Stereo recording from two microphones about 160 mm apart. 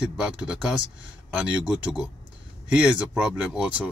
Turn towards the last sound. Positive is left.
turn(degrees=-5)  # may be behind; listen again after turning